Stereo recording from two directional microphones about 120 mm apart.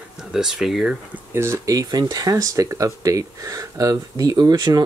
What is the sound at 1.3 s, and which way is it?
Speech, 20° right (ahead or behind).